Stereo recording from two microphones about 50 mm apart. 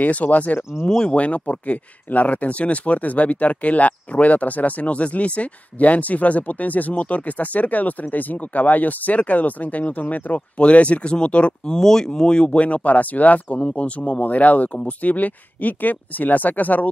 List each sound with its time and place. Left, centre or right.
0.0 s speech: left
0.8 s speech: centre
1.1 s speech: left
11.8 s speech: centre
12.6 s speech: left